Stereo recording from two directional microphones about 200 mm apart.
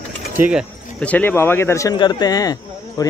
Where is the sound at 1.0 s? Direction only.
10° left (ahead or behind).